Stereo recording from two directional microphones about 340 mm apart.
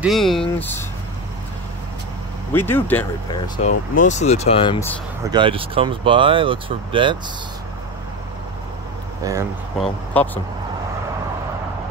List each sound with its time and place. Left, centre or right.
0.0 s speech: centre
2.5 s speech: centre
3.5 s speech: left
5.3 s speech: centre
9.2 s speech: centre
10.1 s speech: centre